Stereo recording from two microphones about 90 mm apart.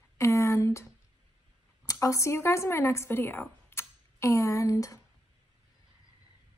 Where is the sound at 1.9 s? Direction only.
35° left (ahead or behind).